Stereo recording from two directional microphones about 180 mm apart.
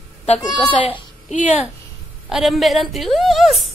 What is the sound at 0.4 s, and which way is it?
Speech, 20° left (ahead or behind).